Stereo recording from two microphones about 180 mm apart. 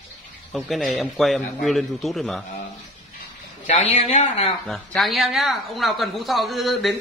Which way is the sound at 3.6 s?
40° left (ahead or behind).